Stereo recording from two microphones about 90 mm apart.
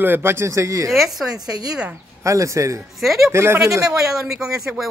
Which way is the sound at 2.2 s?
35° right (ahead or behind).